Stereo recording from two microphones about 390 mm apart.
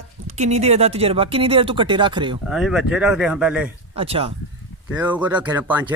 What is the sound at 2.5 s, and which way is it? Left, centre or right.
Speech, centre.